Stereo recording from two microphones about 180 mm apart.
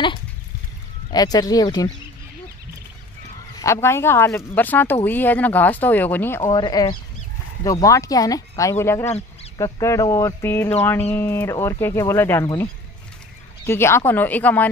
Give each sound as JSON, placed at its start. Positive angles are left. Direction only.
{"t": 1.1, "sound": "speech", "side_deg": 20}
{"t": 3.5, "sound": "speech", "side_deg": 15}
{"t": 13.7, "sound": "speech", "side_deg": 15}